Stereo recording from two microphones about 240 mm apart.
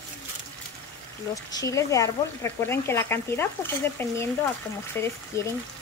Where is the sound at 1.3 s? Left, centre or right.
Centre.